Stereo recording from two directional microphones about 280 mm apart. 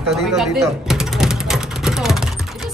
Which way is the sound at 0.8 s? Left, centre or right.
Centre.